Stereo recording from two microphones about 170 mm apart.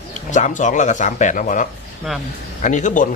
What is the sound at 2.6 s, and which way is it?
Speech, 45° left (ahead or behind).